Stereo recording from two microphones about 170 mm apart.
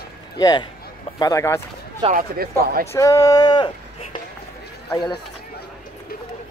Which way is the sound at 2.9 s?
20° left (ahead or behind).